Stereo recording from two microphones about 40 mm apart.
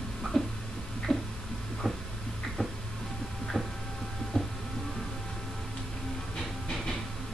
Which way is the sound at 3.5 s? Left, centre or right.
Centre.